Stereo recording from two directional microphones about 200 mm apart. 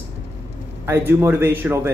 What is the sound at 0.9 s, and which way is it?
Speech, 10° right (ahead or behind).